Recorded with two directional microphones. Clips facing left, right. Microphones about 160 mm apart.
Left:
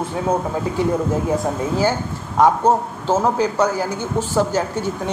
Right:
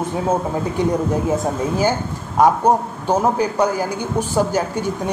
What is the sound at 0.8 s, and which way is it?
Speech, 20° right (ahead or behind).